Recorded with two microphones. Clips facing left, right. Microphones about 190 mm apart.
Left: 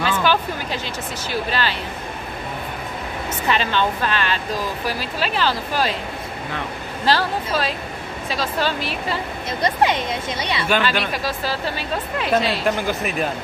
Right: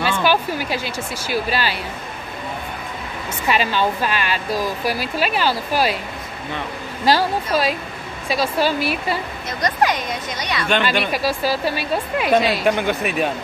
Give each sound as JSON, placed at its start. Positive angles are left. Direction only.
{"t": 0.2, "sound": "speech", "side_deg": -10}
{"t": 3.4, "sound": "speech", "side_deg": -10}
{"t": 7.1, "sound": "speech", "side_deg": -10}
{"t": 9.6, "sound": "speech", "side_deg": 25}
{"t": 10.8, "sound": "speech", "side_deg": -10}
{"t": 12.8, "sound": "speech", "side_deg": 0}